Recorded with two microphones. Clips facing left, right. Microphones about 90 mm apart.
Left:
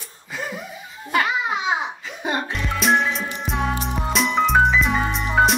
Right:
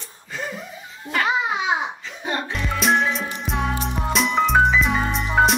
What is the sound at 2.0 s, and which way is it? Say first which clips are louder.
Music: left 2 dB; 15° left (ahead or behind).